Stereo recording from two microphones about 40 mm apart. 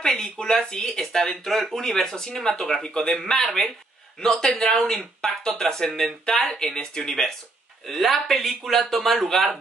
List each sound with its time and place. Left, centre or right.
0.0 s speech: centre